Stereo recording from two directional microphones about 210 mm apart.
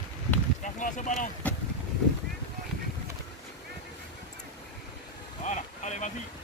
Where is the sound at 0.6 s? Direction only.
35° left (ahead or behind).